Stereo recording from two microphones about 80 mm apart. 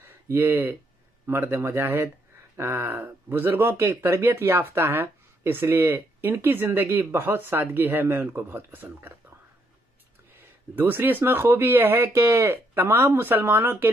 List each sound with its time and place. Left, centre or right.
0.0 s speech: right
10.3 s speech: right